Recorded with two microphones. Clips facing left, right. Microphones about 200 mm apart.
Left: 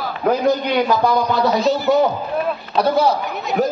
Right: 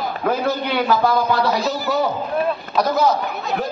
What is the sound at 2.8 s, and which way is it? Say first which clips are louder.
Speech: left 2 dB; 30° left (ahead or behind).